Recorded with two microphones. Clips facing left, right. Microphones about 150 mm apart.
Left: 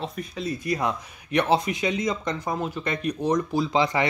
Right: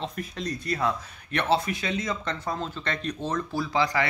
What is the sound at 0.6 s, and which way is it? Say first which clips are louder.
Speech: even; 15° left (ahead or behind).